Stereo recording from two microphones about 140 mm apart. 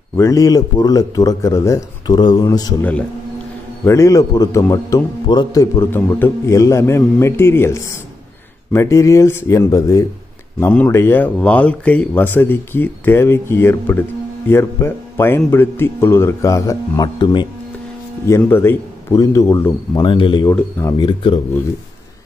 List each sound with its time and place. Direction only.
0.1 s a man's voice: 20° left (ahead or behind)
3.8 s a man's voice: 20° left (ahead or behind)
18.2 s a man's voice: 20° left (ahead or behind)
20.0 s speech: 35° left (ahead or behind)
20.4 s speech: 15° left (ahead or behind)
21.0 s speech: 35° left (ahead or behind)